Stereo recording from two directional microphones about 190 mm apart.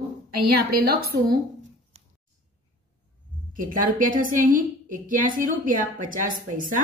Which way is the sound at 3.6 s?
45° right (ahead or behind).